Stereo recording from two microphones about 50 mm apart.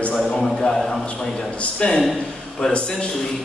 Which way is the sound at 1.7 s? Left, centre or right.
Centre.